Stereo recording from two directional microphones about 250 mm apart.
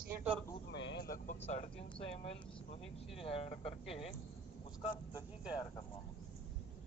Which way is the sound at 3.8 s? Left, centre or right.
Centre.